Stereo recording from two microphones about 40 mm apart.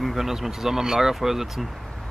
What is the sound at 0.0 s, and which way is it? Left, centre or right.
Speech, centre.